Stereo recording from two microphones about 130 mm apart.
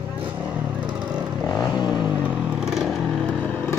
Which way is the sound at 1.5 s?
25° left (ahead or behind).